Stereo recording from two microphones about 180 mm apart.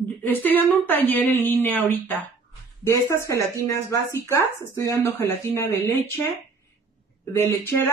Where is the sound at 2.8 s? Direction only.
15° left (ahead or behind).